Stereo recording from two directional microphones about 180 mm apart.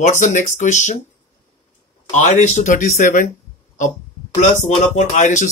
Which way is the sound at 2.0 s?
40° left (ahead or behind).